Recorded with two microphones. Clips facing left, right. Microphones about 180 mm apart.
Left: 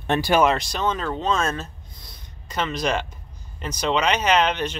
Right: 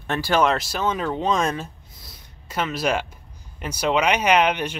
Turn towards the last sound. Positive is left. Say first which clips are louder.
# right 1 dB
turn(degrees=-10)  # may be behind; listen again after turning